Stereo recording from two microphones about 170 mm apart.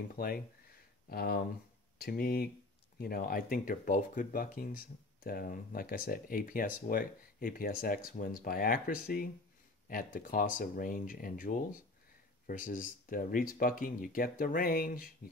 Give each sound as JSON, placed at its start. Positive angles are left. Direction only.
{"t": 0.1, "sound": "speech", "side_deg": 60}